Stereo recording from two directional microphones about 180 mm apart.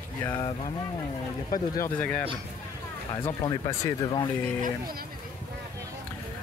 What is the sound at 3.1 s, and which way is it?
Speech, 25° left (ahead or behind).